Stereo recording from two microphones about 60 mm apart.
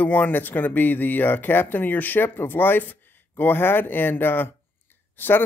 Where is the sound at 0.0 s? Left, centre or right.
Left.